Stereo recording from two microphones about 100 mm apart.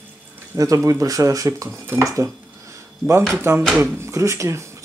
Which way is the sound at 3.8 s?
30° right (ahead or behind).